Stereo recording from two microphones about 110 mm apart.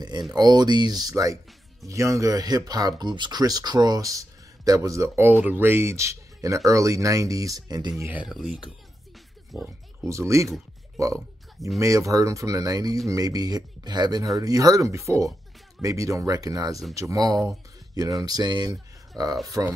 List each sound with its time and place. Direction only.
0.3 s speech: 40° right (ahead or behind)
8.3 s speech: 5° right (ahead or behind)
10.0 s speech: 25° right (ahead or behind)